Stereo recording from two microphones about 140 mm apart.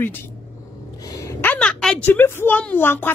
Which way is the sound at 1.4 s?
10° left (ahead or behind).